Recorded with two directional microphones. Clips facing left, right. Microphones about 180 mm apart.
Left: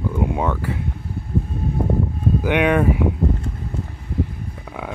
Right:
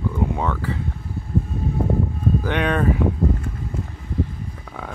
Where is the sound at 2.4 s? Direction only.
10° left (ahead or behind).